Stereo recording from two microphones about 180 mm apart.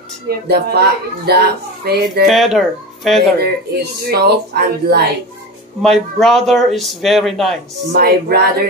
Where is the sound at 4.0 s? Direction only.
60° right (ahead or behind).